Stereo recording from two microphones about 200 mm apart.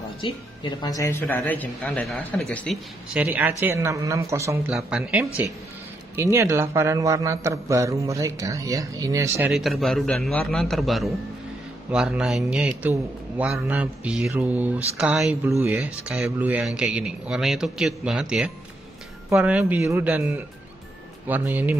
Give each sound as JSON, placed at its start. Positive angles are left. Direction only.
{"t": 0.2, "sound": "a man's voice", "side_deg": 25}
{"t": 9.5, "sound": "a man's voice", "side_deg": 0}